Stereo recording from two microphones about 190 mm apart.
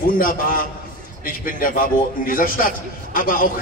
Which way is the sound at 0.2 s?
45° left (ahead or behind).